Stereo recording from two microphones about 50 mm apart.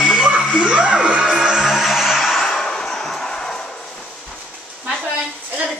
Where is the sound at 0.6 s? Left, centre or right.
Right; by 2.4 s centre.